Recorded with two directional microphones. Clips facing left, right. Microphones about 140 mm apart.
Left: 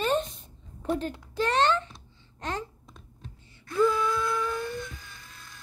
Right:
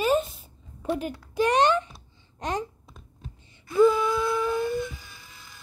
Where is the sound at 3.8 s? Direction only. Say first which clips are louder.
Right 5 dB; 20° right (ahead or behind).